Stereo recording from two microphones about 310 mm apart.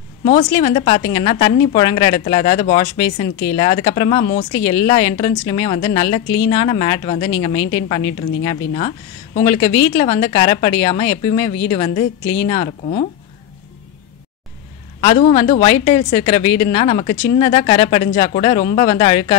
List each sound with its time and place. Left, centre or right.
0.2 s a woman's voice: centre
15.0 s a man's voice: centre